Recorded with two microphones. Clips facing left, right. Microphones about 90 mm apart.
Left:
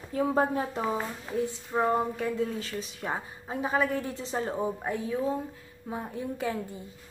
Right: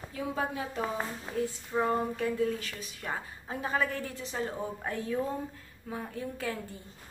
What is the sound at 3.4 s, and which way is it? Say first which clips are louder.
Speech: left 4 dB; 15° left (ahead or behind).